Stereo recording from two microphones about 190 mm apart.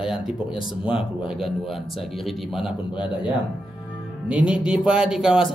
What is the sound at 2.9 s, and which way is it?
Speech, 25° left (ahead or behind).